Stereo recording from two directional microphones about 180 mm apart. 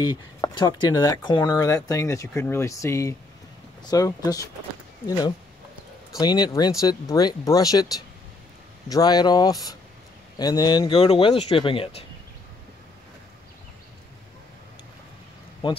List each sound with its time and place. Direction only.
0.0 s speech: 25° left (ahead or behind)
6.1 s speech: 25° left (ahead or behind)
10.9 s speech: 35° left (ahead or behind)
15.6 s speech: 30° left (ahead or behind)